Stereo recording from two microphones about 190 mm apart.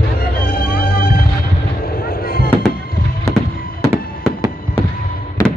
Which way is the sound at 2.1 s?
50° left (ahead or behind).